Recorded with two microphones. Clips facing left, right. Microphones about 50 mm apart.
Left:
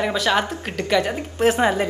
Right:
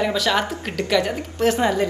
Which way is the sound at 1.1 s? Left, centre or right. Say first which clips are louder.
Left 1 dB; left.